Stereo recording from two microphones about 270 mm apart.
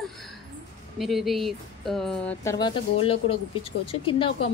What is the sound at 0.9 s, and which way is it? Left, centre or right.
A woman's voice, centre.